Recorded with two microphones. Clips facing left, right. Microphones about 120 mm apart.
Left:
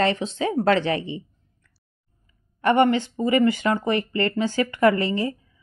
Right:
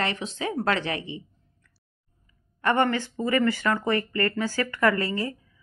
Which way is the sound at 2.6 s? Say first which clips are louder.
Left 5 dB; 20° left (ahead or behind).